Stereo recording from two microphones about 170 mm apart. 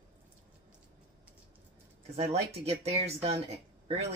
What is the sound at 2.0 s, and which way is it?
Speech, 40° right (ahead or behind).